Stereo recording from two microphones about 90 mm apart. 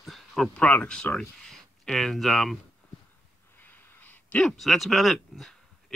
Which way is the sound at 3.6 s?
20° left (ahead or behind).